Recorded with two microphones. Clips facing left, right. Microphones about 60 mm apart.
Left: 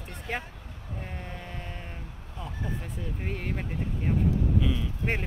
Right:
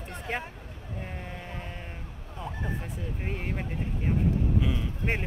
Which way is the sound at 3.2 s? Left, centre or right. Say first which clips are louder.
Even; centre.